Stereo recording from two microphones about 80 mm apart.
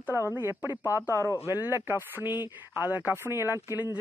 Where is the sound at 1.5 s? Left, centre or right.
Right.